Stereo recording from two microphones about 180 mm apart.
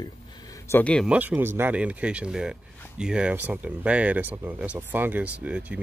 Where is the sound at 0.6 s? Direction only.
10° left (ahead or behind).